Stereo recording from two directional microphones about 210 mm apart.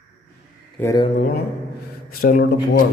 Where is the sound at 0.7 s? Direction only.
10° left (ahead or behind).